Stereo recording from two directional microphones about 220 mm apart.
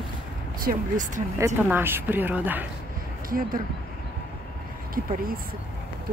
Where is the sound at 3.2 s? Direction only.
40° right (ahead or behind).